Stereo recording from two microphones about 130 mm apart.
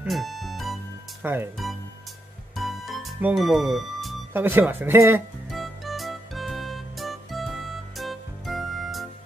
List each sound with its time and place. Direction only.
0.1 s music: centre (ahead or behind)
1.2 s speech: 15° right (ahead or behind)
2.5 s music: centre (ahead or behind)
3.3 s speech: centre (ahead or behind)
4.3 s speech: 15° right (ahead or behind)
5.5 s music: centre (ahead or behind)